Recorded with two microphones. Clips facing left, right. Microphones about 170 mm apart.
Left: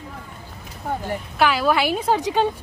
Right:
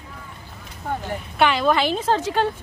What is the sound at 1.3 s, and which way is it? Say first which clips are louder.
A woman's voice: even; 5° left (ahead or behind).